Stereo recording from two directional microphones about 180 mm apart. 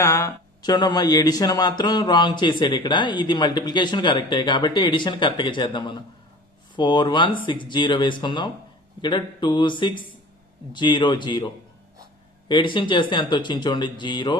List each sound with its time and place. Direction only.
0.0 s speech: 15° left (ahead or behind)